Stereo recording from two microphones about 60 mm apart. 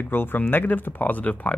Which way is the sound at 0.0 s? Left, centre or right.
Left.